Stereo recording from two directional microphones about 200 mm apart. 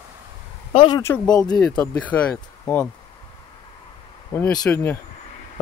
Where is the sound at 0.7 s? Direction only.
25° left (ahead or behind).